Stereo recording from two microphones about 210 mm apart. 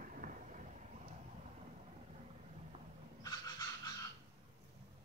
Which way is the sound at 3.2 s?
20° left (ahead or behind).